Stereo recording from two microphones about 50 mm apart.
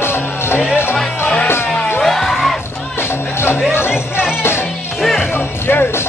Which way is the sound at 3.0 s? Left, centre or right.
Left.